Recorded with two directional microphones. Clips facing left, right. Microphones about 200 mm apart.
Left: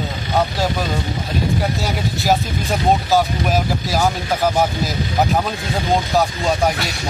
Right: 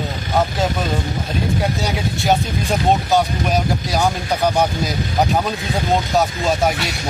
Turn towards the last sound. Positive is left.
turn(degrees=0)  # may be behind; listen again after turning